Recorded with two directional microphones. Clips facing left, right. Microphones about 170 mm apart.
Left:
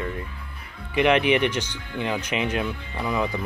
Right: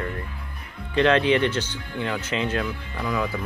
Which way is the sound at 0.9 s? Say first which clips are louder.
Even; 15° left (ahead or behind).